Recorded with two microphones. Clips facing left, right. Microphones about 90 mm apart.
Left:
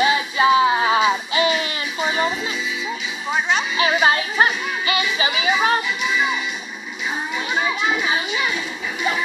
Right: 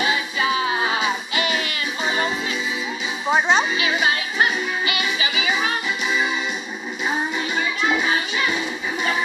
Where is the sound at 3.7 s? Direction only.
40° left (ahead or behind).